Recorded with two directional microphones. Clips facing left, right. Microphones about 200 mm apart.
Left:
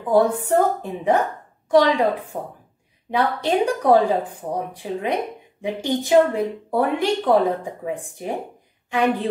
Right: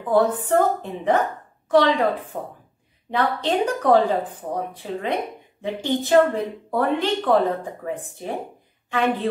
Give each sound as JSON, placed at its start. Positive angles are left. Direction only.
{"t": 0.1, "sound": "a woman's voice", "side_deg": 10}